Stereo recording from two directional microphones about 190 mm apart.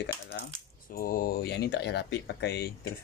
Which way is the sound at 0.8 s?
45° left (ahead or behind).